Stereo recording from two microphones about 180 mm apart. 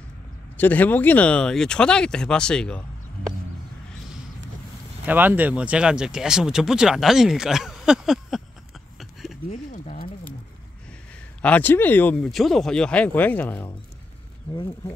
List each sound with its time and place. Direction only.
0.6 s speech: 10° left (ahead or behind)
5.0 s speech: 10° right (ahead or behind)
9.5 s speech: 40° left (ahead or behind)
11.4 s speech: 10° left (ahead or behind)